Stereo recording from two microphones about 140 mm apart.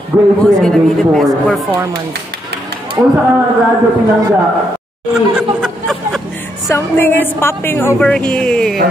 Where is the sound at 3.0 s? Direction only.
20° right (ahead or behind).